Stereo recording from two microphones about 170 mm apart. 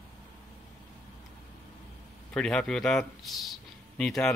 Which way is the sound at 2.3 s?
5° left (ahead or behind).